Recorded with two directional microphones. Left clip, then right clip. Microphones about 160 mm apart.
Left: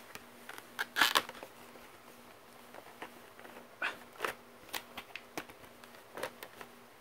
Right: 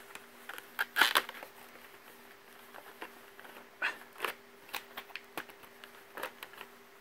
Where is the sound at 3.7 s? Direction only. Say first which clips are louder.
Right 2 dB; centre (ahead or behind).